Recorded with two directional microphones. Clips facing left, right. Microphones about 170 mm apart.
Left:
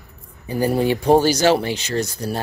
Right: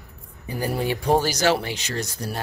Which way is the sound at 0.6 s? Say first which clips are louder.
Left 6 dB; 25° left (ahead or behind).